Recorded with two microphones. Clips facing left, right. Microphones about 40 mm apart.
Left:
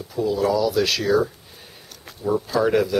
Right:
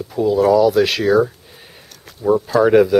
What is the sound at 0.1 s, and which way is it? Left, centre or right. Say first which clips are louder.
Speech: right 7 dB; centre.